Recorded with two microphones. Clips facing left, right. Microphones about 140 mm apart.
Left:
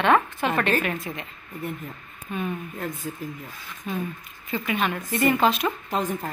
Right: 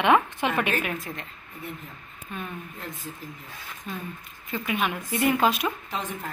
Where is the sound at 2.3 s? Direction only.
Centre (ahead or behind).